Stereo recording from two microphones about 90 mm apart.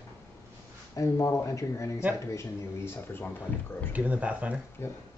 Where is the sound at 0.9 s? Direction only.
35° left (ahead or behind).